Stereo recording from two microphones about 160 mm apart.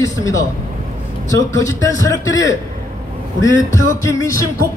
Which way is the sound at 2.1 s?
20° left (ahead or behind).